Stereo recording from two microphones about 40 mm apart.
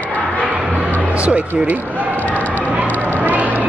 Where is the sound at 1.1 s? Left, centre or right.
Right.